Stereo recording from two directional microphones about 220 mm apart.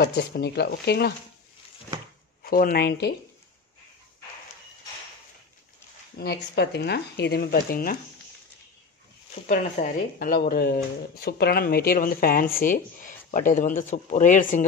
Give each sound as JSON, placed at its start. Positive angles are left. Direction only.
{"t": 0.0, "sound": "speech", "side_deg": 50}
{"t": 2.4, "sound": "speech", "side_deg": 40}
{"t": 6.1, "sound": "speech", "side_deg": 50}
{"t": 9.3, "sound": "speech", "side_deg": 35}